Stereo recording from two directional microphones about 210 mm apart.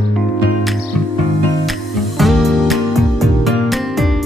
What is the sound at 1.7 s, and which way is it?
Music, centre (ahead or behind).